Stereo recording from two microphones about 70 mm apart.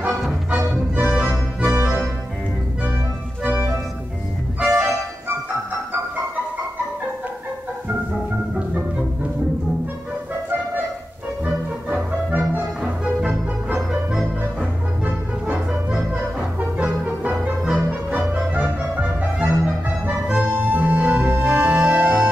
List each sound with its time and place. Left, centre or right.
0.5 s music: right
3.4 s organ: right
4.6 s music: centre
8.5 s organ: right
11.4 s music: right
15.0 s music: centre
21.2 s music: right